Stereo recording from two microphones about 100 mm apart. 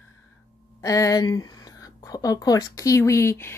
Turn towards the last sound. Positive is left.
turn(degrees=25)  # may be behind; listen again after turning